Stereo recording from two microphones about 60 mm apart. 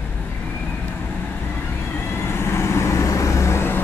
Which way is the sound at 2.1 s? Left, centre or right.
Left.